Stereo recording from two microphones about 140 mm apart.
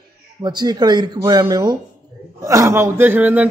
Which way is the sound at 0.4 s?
30° right (ahead or behind).